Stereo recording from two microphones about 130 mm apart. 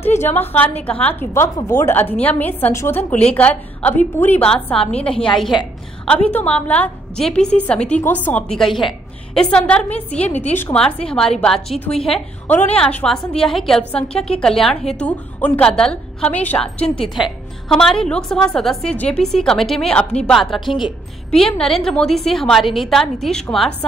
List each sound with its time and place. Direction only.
0.2 s a woman's voice: 15° left (ahead or behind)
8.5 s a woman's voice: centre (ahead or behind)